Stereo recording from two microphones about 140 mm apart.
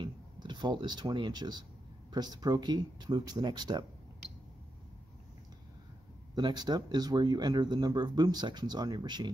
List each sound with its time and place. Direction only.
0.0 s a sound: 35° right (ahead or behind)
2.1 s speech: 30° right (ahead or behind)
6.3 s speech: 30° right (ahead or behind)